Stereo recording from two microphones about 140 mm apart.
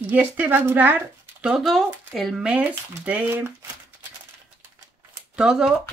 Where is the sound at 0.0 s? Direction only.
15° right (ahead or behind).